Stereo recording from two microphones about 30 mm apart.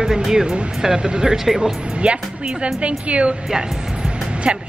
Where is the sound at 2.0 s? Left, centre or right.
Right.